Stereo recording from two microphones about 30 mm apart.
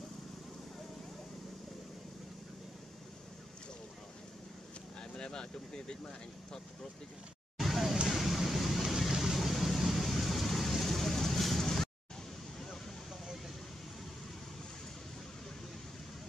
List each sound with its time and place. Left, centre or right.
5.1 s speech: left
7.5 s vehicle: centre